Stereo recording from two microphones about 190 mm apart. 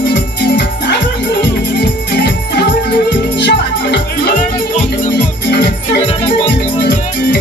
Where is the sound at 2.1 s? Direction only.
65° left (ahead or behind).